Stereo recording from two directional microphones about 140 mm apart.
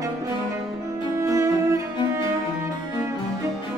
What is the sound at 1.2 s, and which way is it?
Music, 20° right (ahead or behind).